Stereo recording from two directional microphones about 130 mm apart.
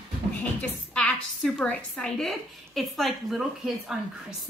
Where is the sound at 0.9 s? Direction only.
10° left (ahead or behind).